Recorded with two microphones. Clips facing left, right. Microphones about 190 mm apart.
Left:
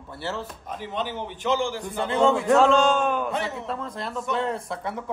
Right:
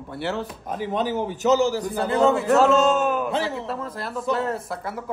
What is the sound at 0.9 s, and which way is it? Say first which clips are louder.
A man's voice: right 6 dB; 45° right (ahead or behind).